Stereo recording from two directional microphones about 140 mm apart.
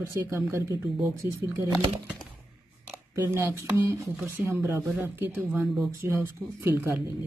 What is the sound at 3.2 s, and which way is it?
Speech, 20° right (ahead or behind).